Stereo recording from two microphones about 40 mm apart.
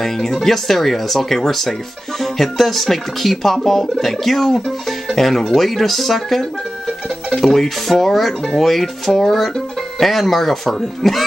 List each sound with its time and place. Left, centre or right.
0.0 s speech: centre